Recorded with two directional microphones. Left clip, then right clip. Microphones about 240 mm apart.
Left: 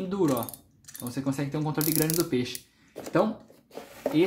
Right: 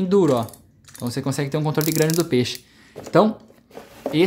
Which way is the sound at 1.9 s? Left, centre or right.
Centre.